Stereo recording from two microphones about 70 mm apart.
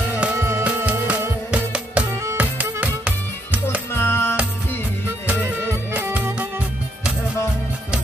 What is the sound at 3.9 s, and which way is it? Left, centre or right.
Music, left.